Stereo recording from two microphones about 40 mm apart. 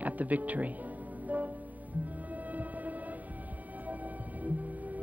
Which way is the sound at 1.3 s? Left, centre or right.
Right.